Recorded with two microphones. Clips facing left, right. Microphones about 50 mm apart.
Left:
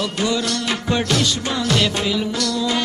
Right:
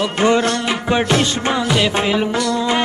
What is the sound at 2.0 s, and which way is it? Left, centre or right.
Music, right.